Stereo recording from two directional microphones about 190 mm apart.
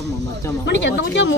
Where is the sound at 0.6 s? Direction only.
70° left (ahead or behind).